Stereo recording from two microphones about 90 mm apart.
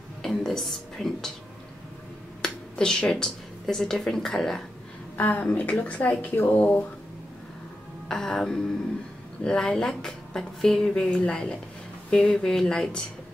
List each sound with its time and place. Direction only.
0.2 s a sound: 5° left (ahead or behind)
2.4 s speech: 10° left (ahead or behind)
5.1 s speech: 15° left (ahead or behind)
8.1 s speech: 5° left (ahead or behind)